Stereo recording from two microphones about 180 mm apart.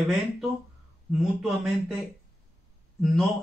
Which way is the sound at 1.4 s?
Centre (ahead or behind).